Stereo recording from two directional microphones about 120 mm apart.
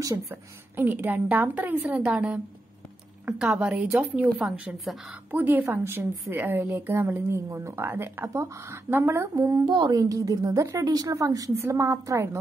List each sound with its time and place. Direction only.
0.3 s a woman's voice: 15° right (ahead or behind)
5.3 s a woman's voice: 15° right (ahead or behind)